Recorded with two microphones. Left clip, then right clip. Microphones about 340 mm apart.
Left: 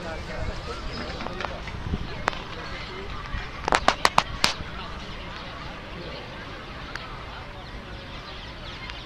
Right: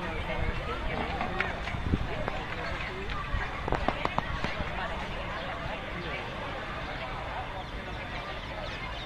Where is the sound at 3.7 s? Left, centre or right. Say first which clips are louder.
Left 11 dB; left.